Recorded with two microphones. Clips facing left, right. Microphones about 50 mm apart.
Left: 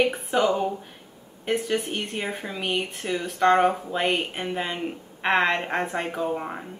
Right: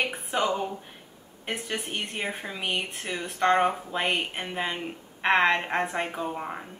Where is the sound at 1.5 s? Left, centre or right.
Centre.